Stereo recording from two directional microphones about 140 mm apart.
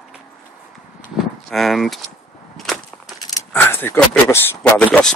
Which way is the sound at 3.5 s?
15° left (ahead or behind).